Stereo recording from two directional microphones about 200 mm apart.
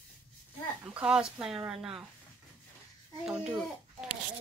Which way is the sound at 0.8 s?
5° right (ahead or behind).